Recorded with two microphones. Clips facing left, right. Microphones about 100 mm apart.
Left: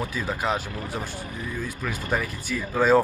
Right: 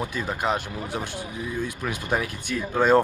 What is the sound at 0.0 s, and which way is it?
Speech, 5° right (ahead or behind).